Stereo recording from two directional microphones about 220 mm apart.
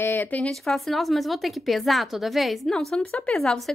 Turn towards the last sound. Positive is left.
turn(degrees=0)  # may be behind; listen again after turning